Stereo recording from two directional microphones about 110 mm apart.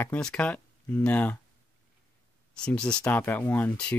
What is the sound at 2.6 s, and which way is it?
Speech, 10° left (ahead or behind).